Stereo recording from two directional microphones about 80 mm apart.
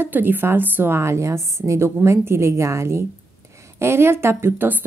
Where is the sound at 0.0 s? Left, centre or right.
Right.